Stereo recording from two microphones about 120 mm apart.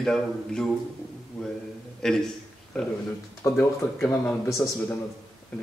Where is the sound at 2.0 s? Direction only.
5° left (ahead or behind).